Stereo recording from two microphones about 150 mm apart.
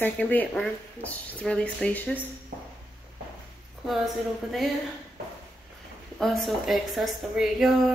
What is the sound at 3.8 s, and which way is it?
Speech, centre (ahead or behind).